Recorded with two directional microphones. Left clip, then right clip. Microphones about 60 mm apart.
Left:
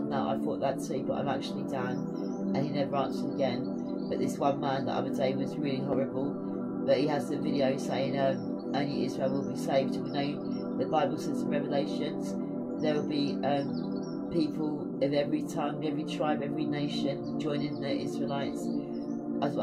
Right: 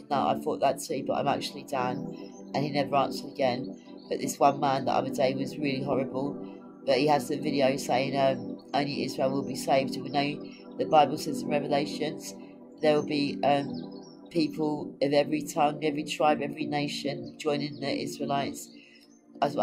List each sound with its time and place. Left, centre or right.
0.1 s speech: right